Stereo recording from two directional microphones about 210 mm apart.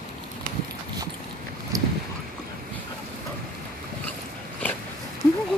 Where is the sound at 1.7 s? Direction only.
15° right (ahead or behind).